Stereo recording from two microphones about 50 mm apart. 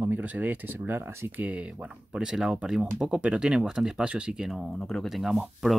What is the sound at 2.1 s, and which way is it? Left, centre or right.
Speech, centre.